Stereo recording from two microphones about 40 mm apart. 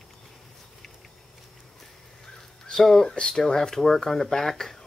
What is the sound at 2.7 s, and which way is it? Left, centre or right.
Speech, centre.